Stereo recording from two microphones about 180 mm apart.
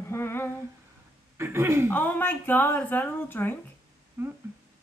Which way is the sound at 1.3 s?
15° right (ahead or behind).